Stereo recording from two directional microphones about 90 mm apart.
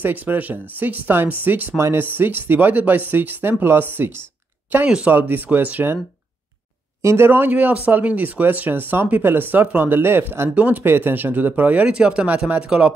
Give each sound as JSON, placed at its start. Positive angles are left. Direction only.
{"t": 0.0, "sound": "speech", "side_deg": -20}
{"t": 4.8, "sound": "speech", "side_deg": -10}
{"t": 5.1, "sound": "speech", "side_deg": -20}
{"t": 7.0, "sound": "speech", "side_deg": -30}